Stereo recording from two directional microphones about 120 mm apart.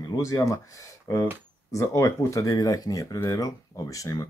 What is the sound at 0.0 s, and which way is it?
Speech, 30° left (ahead or behind).